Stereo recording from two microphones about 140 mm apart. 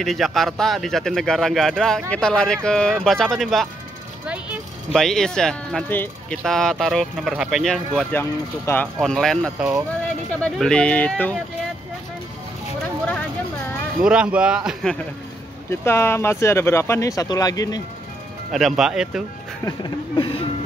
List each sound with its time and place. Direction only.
0.0 s speech: centre (ahead or behind)
4.9 s speech: 5° left (ahead or behind)
9.0 s speech: 5° left (ahead or behind)
14.0 s a man's voice: 10° right (ahead or behind)
15.7 s speech: 15° left (ahead or behind)
18.5 s speech: centre (ahead or behind)
19.6 s speech: 35° left (ahead or behind)